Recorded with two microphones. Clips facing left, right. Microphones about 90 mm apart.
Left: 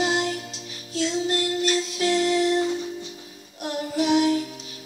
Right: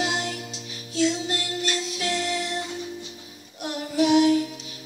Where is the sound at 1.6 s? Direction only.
35° left (ahead or behind).